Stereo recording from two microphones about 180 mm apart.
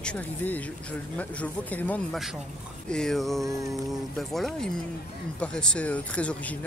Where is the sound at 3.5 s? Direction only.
15° right (ahead or behind).